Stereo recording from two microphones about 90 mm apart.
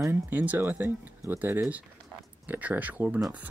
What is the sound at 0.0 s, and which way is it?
Speech, 25° right (ahead or behind).